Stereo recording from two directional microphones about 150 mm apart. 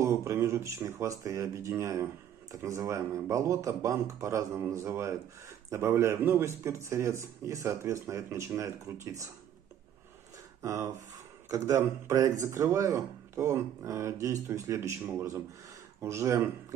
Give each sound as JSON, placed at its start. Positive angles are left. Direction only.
{"t": 0.0, "sound": "a man's voice", "side_deg": -20}
{"t": 10.6, "sound": "a man's voice", "side_deg": -20}